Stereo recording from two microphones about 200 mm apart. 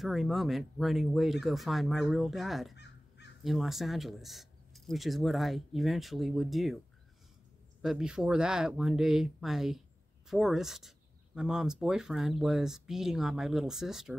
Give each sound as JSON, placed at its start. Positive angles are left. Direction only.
{"t": 0.0, "sound": "speech", "side_deg": 0}
{"t": 2.7, "sound": "crow", "side_deg": 60}
{"t": 3.4, "sound": "speech", "side_deg": 0}
{"t": 7.8, "sound": "speech", "side_deg": 0}